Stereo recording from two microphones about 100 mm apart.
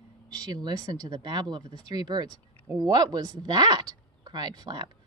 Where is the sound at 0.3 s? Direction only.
40° right (ahead or behind).